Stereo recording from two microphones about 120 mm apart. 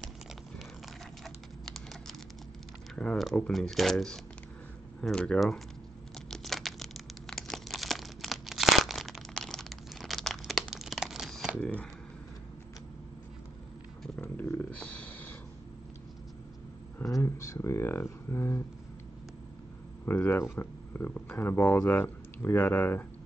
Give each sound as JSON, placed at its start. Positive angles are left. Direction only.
{"t": 3.0, "sound": "speech", "side_deg": 5}
{"t": 6.3, "sound": "crumpling", "side_deg": 0}
{"t": 11.6, "sound": "speech", "side_deg": 10}
{"t": 14.0, "sound": "a sound", "side_deg": 10}
{"t": 17.0, "sound": "a sound", "side_deg": 25}
{"t": 20.1, "sound": "speech", "side_deg": 20}